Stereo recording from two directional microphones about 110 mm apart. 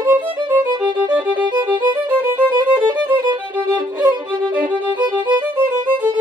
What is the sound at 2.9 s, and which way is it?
Violin, 40° right (ahead or behind).